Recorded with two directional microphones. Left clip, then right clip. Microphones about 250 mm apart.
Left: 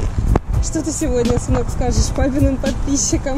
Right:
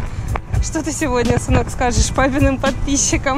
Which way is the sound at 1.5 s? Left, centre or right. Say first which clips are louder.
Right 3 dB; right.